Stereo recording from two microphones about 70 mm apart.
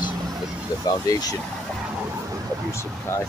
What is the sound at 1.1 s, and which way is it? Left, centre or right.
Speech, left.